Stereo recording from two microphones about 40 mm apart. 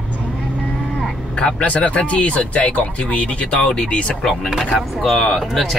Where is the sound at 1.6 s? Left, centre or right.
Left.